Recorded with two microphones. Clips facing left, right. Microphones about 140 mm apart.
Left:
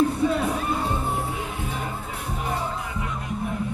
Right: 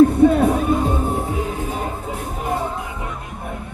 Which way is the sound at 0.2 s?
50° right (ahead or behind).